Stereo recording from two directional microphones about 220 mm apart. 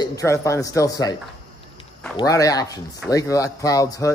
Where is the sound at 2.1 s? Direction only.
15° left (ahead or behind).